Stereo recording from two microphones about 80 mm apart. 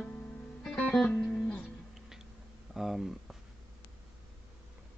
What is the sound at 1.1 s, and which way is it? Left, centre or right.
Music, centre.